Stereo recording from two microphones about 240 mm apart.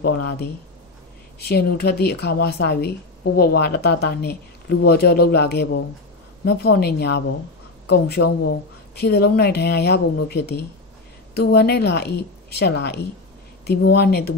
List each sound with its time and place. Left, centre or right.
1.5 s speech: left